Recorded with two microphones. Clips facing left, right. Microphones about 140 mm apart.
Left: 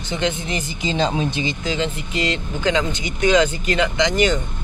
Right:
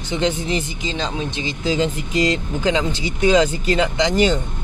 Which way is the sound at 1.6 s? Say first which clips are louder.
Right 3 dB; 40° right (ahead or behind).